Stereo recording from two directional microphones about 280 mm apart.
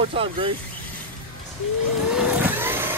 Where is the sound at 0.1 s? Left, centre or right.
Centre.